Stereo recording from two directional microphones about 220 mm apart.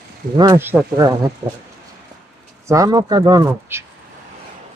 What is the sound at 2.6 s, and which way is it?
Speech, 15° right (ahead or behind).